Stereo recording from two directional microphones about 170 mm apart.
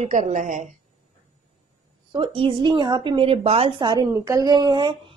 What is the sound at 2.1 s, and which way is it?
A woman's voice, 30° right (ahead or behind).